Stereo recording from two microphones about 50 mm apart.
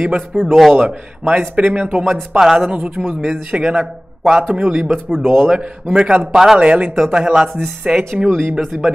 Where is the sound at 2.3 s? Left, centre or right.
Centre.